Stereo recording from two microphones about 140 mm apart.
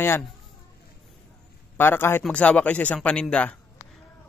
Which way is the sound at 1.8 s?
15° left (ahead or behind).